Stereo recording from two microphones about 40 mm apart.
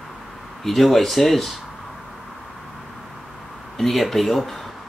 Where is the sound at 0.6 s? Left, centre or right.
Centre.